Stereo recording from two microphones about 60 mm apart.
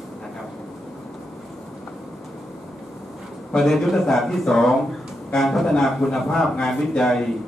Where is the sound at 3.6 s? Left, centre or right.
Centre.